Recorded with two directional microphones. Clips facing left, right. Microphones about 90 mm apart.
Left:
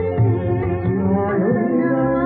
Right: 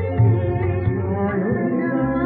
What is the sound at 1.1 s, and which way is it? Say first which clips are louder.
Music: left 2 dB; 20° left (ahead or behind).